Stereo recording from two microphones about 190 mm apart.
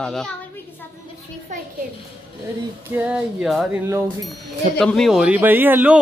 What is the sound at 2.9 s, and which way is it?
Speech, 5° right (ahead or behind).